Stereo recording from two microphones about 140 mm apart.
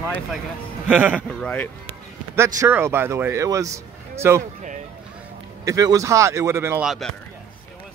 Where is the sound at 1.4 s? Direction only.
10° left (ahead or behind).